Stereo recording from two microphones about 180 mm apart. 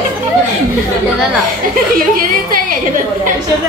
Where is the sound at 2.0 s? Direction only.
50° right (ahead or behind).